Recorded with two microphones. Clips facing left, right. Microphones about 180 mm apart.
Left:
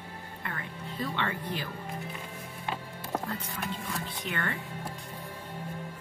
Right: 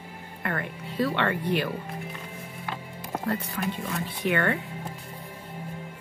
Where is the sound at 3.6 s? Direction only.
60° right (ahead or behind).